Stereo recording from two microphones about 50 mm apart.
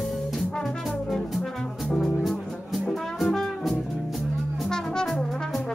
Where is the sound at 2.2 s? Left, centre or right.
Centre.